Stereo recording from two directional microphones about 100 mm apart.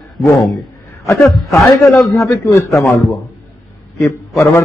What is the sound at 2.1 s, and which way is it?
Speech, 30° left (ahead or behind).